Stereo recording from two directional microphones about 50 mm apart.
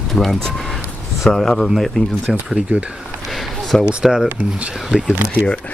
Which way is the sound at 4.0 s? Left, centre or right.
Centre.